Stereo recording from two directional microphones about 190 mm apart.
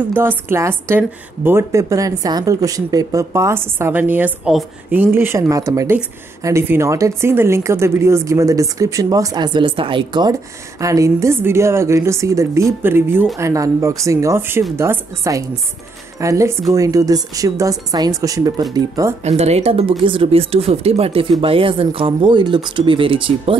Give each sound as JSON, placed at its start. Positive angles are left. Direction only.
{"t": 0.1, "sound": "a woman's voice", "side_deg": -10}
{"t": 19.2, "sound": "speech", "side_deg": -35}